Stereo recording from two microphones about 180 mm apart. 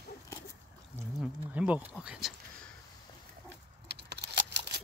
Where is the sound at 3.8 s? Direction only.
65° right (ahead or behind).